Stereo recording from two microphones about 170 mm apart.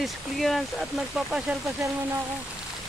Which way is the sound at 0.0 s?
Centre (ahead or behind).